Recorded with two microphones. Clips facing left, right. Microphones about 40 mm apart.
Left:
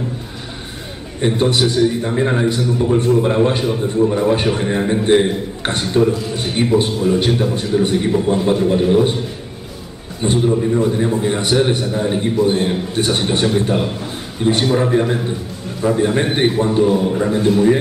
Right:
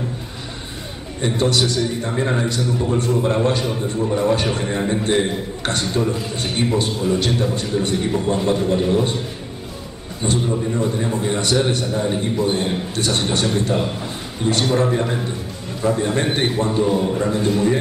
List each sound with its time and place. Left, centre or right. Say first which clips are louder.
1.2 s a man's voice: left 3 dB; centre
10.2 s a man's voice: left 5 dB; centre
14.0 s a sound: left 4 dB; centre
14.7 s a man's voice: left 3 dB; centre